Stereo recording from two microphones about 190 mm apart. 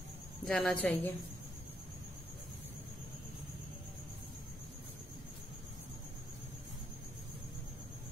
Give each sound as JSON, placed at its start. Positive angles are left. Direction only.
{"t": 0.5, "sound": "a woman's voice", "side_deg": 5}